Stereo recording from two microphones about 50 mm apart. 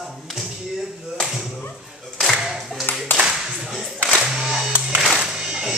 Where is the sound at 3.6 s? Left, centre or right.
Centre.